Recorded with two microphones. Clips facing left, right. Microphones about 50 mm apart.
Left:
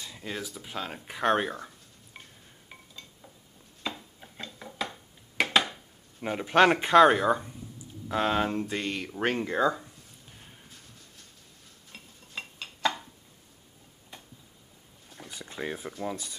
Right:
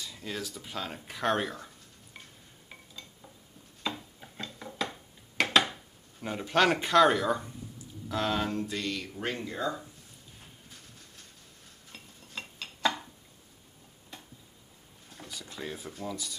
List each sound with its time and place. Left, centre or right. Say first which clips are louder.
0.0 s speech: left 1 dB; centre
2.1 s frying: left 1 dB; centre
2.7 s dishes: even; centre
3.8 s chopping: right 1 dB; centre
5.4 s a sound: left 1 dB; centre
6.2 s speech: left 4 dB; centre; by 9.8 s left
11.9 s dishes: left 2 dB; centre
15.2 s speech: left 4 dB; left